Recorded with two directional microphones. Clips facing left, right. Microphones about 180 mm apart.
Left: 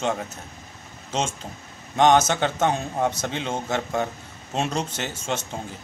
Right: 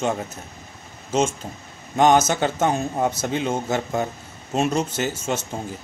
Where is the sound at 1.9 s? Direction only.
5° right (ahead or behind).